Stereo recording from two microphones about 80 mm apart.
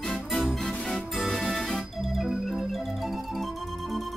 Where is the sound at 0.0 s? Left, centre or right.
Centre.